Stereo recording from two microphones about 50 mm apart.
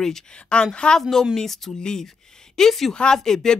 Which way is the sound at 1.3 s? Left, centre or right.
Centre.